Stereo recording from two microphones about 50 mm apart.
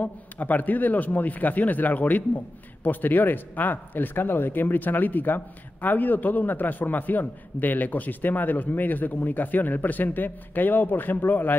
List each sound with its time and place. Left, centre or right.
0.0 s speech: left